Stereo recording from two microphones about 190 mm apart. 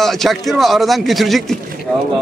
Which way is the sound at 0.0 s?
Centre (ahead or behind).